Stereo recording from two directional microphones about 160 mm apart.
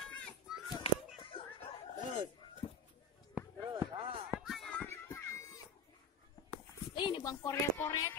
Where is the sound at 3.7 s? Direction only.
25° right (ahead or behind).